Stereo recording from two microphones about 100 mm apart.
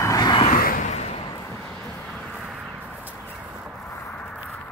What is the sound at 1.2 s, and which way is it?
Vehicle, 45° left (ahead or behind).